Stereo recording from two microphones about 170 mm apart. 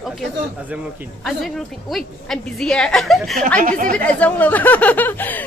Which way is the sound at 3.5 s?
50° right (ahead or behind).